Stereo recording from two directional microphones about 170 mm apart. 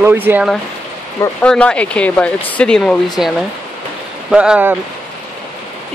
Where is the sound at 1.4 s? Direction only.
5° left (ahead or behind).